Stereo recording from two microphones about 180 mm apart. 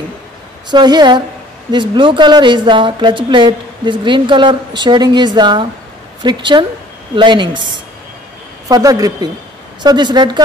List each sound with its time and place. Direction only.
0.7 s a woman's voice: 25° right (ahead or behind)